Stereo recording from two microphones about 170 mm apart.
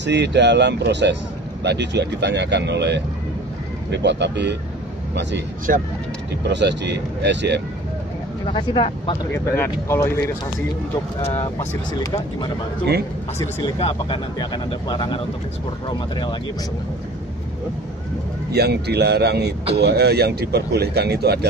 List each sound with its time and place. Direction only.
0.0 s speech: 90° right
6.5 s speech: 90° right
8.5 s speech: 30° left (ahead or behind)
9.3 s speech: 15° left (ahead or behind)
11.9 s speech: 25° left (ahead or behind)
13.7 s speech: 30° left (ahead or behind)
18.5 s speech: 75° right (ahead or behind)